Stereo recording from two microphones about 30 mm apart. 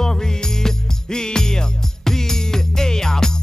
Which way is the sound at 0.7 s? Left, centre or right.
Left.